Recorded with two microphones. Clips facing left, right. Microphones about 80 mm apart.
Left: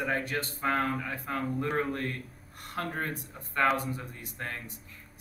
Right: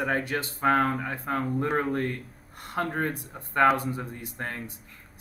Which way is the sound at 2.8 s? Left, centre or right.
Right.